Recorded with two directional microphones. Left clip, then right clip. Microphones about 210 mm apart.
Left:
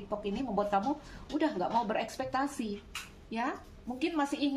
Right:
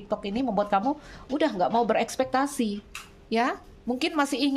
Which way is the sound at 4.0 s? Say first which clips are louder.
Right 6 dB; 50° right (ahead or behind).